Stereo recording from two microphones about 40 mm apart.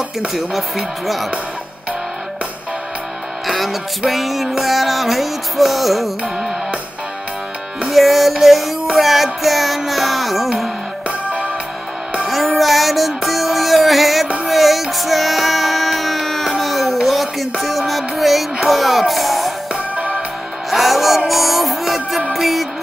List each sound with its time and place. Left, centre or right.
0.3 s music: centre
3.4 s music: centre
7.9 s music: centre
11.1 s music: right
12.5 s music: centre
19.7 s music: right
20.7 s music: centre